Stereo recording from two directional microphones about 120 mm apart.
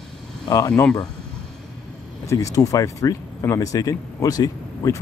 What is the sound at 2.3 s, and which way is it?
Speech, 30° left (ahead or behind).